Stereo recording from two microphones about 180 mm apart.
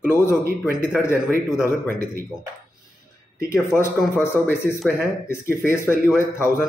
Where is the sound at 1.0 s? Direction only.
15° left (ahead or behind).